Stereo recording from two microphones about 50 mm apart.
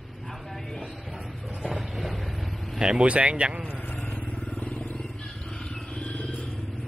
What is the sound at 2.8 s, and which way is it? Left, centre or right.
Speech, centre.